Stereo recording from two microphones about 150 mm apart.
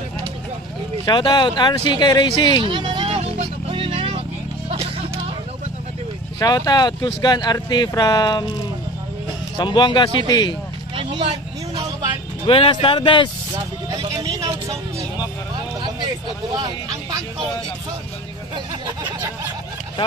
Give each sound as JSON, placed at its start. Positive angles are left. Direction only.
{"t": 1.0, "sound": "speech", "side_deg": 30}
{"t": 2.6, "sound": "a sound", "side_deg": -35}
{"t": 4.6, "sound": "music", "side_deg": -40}
{"t": 6.4, "sound": "speech", "side_deg": 25}
{"t": 9.6, "sound": "speech", "side_deg": 30}
{"t": 11.0, "sound": "vehicle", "side_deg": -35}
{"t": 12.4, "sound": "speech", "side_deg": 35}
{"t": 13.8, "sound": "vehicle", "side_deg": -25}
{"t": 16.5, "sound": "vehicle", "side_deg": -30}